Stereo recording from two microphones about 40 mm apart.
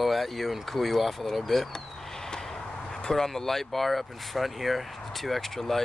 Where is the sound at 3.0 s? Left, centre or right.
Centre.